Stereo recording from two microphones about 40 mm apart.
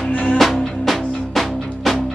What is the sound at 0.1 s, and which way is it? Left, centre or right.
Music, left.